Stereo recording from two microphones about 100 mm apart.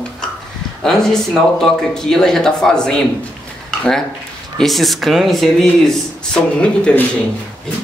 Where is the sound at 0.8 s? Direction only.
5° left (ahead or behind).